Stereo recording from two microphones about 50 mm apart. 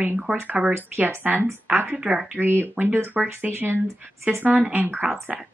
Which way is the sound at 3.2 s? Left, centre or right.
Centre.